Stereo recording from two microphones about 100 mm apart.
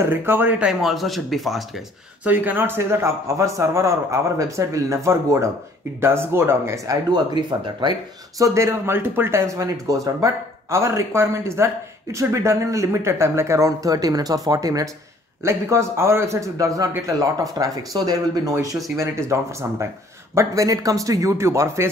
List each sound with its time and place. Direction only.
0.0 s a man's voice: 20° right (ahead or behind)
0.7 s speech: centre (ahead or behind)
2.2 s a man's voice: 15° right (ahead or behind)
7.1 s speech: 50° right (ahead or behind)
8.4 s speech: 25° right (ahead or behind)
15.4 s a man's voice: 25° right (ahead or behind)